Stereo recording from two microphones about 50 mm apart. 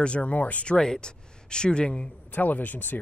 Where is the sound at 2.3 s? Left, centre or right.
Left.